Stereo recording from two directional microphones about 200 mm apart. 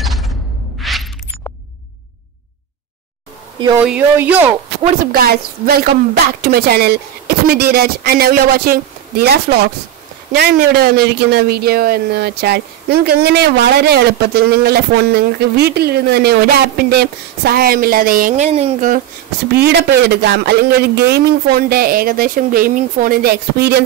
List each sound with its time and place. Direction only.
0.8 s a sound: centre (ahead or behind)
3.7 s speech: 10° right (ahead or behind)
5.0 s speech: 50° right (ahead or behind)
19.5 s speech: 55° right (ahead or behind)